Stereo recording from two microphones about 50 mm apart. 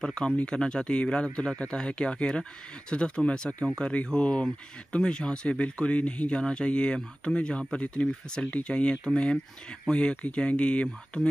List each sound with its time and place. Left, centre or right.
0.0 s speech: centre